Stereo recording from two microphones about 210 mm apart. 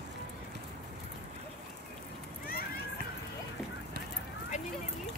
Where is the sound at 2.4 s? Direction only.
45° left (ahead or behind).